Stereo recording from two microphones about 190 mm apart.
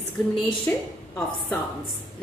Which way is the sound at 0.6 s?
10° left (ahead or behind).